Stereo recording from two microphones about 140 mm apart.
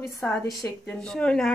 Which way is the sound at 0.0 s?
20° left (ahead or behind).